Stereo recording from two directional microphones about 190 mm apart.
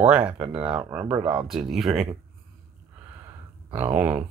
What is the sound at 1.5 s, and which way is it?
Speech, centre (ahead or behind).